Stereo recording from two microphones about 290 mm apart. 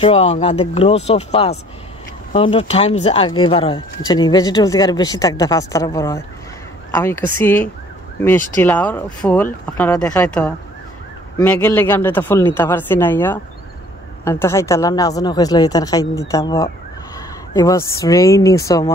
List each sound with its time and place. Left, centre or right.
0.0 s speech: left
7.4 s speech: centre